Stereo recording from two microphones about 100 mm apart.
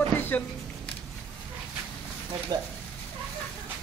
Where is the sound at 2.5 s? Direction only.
45° right (ahead or behind).